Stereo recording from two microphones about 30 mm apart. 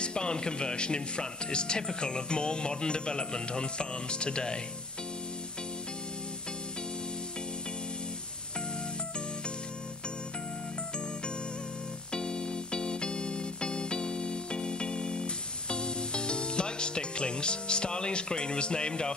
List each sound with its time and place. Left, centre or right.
0.0 s speech: left
12.1 s keyboard: left